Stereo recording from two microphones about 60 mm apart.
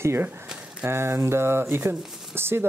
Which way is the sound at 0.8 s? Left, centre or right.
Right.